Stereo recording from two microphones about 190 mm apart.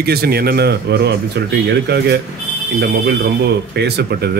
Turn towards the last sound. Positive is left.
turn(degrees=-55)  # may be behind; listen again after turning